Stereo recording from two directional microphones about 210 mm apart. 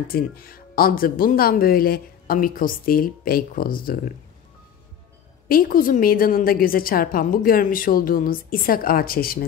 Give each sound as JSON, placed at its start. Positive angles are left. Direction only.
{"t": 0.1, "sound": "speech", "side_deg": 45}
{"t": 5.5, "sound": "speech", "side_deg": 45}